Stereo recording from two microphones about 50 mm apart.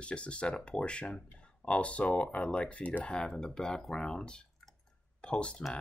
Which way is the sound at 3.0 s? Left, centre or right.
Centre.